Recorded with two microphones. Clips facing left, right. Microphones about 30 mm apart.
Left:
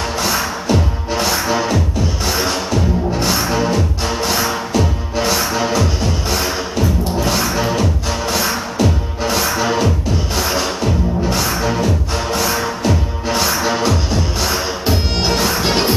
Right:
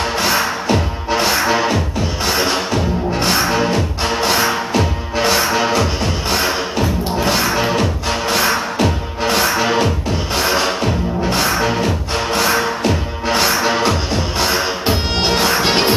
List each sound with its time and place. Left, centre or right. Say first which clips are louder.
0.2 s music: right 2 dB; right